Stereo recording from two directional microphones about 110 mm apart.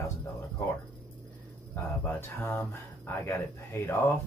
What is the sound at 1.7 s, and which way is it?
Speech, 25° left (ahead or behind).